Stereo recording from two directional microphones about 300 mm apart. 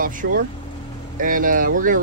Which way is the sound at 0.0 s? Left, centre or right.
Right.